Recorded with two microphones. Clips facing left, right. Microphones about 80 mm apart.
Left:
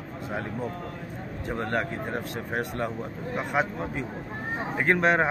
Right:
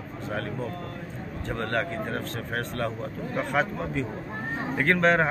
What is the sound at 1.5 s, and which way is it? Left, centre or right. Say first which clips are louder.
A man's voice: even; centre.